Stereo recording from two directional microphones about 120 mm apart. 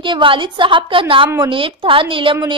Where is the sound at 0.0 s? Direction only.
45° right (ahead or behind).